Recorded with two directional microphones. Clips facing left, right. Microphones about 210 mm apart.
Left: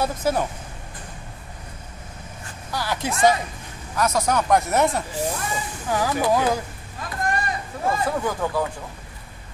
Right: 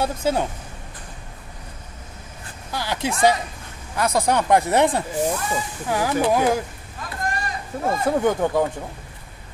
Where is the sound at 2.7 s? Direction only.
20° right (ahead or behind).